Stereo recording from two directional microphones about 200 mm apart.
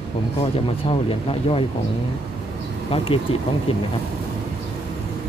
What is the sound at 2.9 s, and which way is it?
Speech, 25° left (ahead or behind).